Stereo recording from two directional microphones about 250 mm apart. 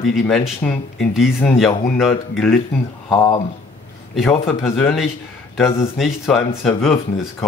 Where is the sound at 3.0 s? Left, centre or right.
Centre.